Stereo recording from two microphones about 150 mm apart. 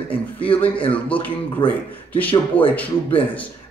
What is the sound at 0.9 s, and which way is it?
A man's voice, 10° left (ahead or behind).